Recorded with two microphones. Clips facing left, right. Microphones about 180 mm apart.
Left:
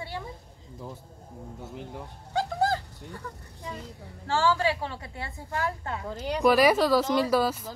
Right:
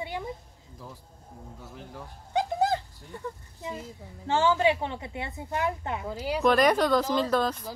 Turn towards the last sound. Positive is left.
turn(degrees=5)  # may be behind; listen again after turning